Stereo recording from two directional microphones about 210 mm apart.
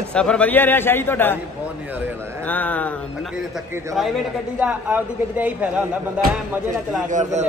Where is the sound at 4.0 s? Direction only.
Centre (ahead or behind).